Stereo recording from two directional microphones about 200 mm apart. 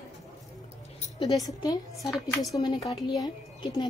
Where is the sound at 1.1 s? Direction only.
20° left (ahead or behind).